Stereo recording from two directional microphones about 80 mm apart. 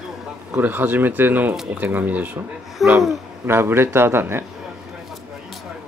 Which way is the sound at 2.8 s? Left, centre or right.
Centre.